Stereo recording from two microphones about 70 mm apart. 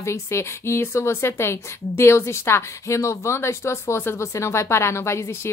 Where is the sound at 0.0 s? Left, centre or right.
Left.